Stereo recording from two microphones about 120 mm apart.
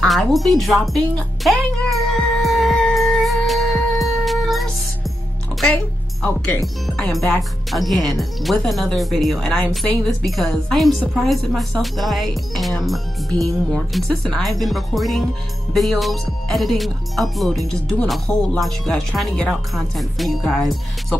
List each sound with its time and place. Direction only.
0.0 s music: centre (ahead or behind)
6.2 s speech: 10° left (ahead or behind)
6.6 s speech: centre (ahead or behind)